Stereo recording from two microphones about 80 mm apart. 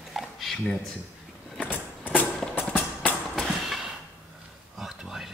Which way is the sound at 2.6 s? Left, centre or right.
Left.